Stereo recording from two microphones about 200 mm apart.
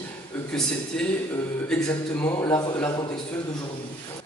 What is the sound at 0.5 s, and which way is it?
A man's voice, 5° left (ahead or behind).